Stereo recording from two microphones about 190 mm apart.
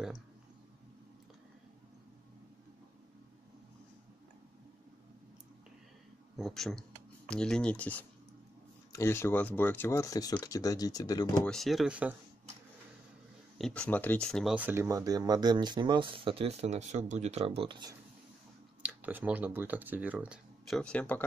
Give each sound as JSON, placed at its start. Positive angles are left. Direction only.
{"t": 6.3, "sound": "speech", "side_deg": 0}
{"t": 11.4, "sound": "speech", "side_deg": 0}
{"t": 13.6, "sound": "speech", "side_deg": 5}
{"t": 18.8, "sound": "speech", "side_deg": -10}